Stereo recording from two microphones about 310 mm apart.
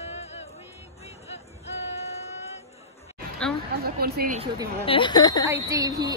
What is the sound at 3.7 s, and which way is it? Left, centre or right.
Speech, right.